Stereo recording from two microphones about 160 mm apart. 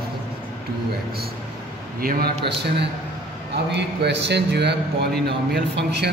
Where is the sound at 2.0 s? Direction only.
70° right (ahead or behind).